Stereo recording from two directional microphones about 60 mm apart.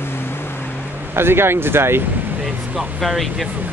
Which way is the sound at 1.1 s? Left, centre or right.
Right.